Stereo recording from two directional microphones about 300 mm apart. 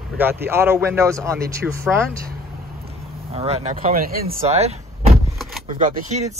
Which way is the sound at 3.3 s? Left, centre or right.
Right.